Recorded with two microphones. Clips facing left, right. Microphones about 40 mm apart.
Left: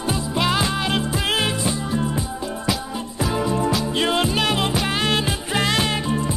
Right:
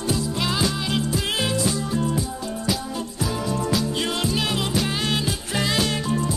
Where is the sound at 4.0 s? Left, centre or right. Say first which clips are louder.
Left 4 dB; left.